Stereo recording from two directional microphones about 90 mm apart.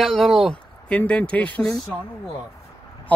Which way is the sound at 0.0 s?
5° left (ahead or behind).